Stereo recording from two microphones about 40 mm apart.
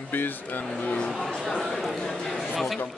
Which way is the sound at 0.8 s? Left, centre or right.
Left.